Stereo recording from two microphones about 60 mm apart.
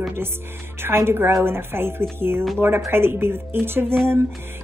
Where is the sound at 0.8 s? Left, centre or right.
Right.